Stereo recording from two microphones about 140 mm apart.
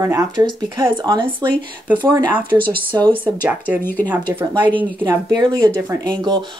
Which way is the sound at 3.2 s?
10° right (ahead or behind).